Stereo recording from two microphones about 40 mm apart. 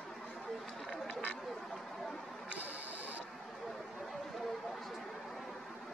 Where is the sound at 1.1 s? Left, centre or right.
Left.